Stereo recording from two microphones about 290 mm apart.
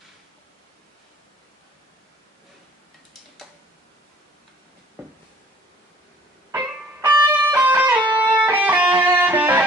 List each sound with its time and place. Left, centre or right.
6.5 s music: centre